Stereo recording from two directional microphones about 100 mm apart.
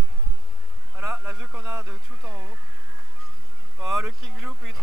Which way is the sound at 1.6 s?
30° right (ahead or behind).